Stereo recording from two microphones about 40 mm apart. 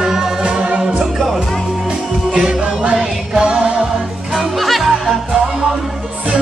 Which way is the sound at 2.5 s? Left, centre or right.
Right.